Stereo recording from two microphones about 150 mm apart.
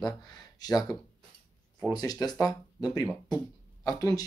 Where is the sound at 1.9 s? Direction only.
25° left (ahead or behind).